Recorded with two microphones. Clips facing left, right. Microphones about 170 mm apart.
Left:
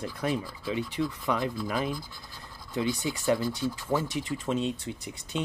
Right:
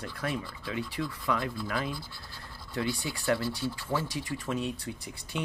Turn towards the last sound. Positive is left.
turn(degrees=20)  # may be behind; listen again after turning